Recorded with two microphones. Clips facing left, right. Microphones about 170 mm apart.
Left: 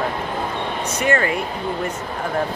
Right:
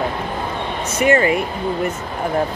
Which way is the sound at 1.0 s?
10° right (ahead or behind).